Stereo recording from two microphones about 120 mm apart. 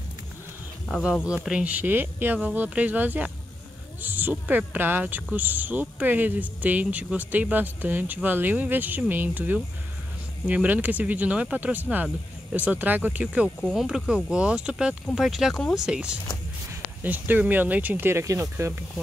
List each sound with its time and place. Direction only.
0.8 s speech: centre (ahead or behind); by 18.8 s 25° right (ahead or behind)